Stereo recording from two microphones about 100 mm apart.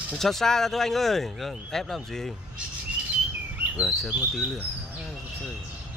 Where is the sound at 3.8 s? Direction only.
Centre (ahead or behind).